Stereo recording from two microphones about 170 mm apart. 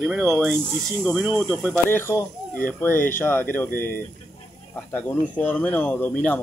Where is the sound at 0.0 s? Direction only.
Centre (ahead or behind).